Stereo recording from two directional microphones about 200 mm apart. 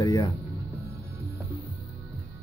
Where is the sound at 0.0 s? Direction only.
15° left (ahead or behind).